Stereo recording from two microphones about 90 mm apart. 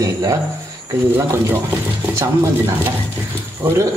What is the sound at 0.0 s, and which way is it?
Speech, 40° right (ahead or behind).